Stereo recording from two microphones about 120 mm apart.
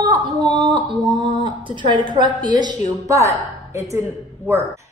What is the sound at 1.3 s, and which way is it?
A woman's voice, 40° right (ahead or behind).